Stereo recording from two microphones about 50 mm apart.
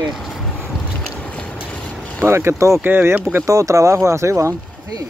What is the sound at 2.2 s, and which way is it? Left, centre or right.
Speech, right.